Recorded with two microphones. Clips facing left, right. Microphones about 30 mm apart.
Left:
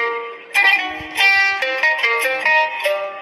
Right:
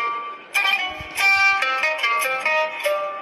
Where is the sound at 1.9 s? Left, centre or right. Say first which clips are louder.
Left 4 dB; left.